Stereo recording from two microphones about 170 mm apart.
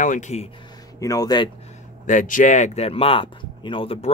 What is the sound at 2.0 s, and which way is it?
Speech, 50° left (ahead or behind).